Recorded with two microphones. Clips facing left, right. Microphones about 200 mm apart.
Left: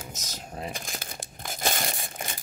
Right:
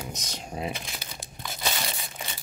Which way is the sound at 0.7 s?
45° left (ahead or behind).